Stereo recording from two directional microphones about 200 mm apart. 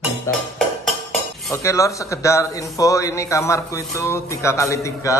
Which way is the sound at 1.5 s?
15° left (ahead or behind).